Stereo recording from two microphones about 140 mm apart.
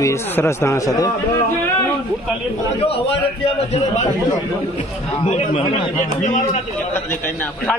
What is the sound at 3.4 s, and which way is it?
Speech, 45° left (ahead or behind).